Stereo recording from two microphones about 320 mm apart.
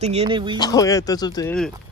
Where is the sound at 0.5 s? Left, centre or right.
Centre.